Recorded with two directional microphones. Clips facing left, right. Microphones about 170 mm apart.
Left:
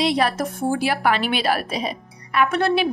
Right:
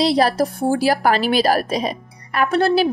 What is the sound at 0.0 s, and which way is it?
A woman's voice, 35° right (ahead or behind).